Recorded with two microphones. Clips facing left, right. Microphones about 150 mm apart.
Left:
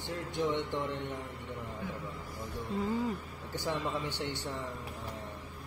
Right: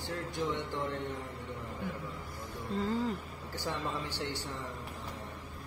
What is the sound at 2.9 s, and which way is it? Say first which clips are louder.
Speech: even; 15° left (ahead or behind).